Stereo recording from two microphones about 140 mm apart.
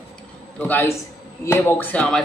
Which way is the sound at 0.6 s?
15° left (ahead or behind).